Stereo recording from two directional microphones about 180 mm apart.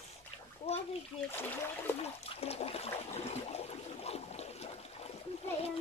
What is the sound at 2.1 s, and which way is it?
Water, 35° left (ahead or behind).